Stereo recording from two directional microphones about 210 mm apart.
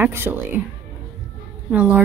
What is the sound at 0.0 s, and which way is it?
Speech, 10° right (ahead or behind).